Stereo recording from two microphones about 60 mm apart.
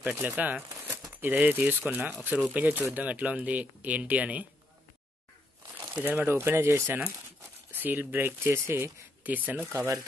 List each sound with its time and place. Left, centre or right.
0.0 s speech: right
0.7 s crumpling: right
1.2 s speech: right
5.9 s speech: right
8.4 s speech: right
9.2 s speech: right